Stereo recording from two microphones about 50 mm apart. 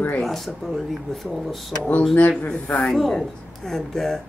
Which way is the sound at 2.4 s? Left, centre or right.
Left.